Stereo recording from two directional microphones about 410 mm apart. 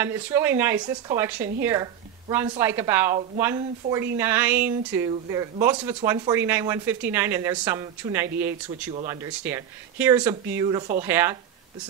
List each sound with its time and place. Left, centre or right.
0.0 s speech: centre